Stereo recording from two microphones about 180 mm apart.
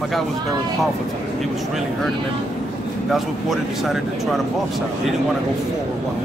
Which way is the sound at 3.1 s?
Centre (ahead or behind).